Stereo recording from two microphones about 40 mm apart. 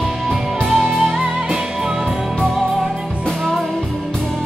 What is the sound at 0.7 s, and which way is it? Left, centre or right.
Music, centre.